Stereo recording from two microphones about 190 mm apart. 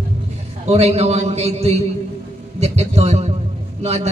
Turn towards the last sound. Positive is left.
turn(degrees=-35)  # may be behind; listen again after turning